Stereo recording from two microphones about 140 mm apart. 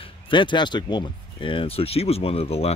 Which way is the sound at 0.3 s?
35° left (ahead or behind).